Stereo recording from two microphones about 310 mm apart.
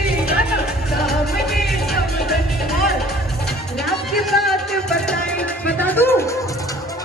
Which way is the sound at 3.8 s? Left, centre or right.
Centre.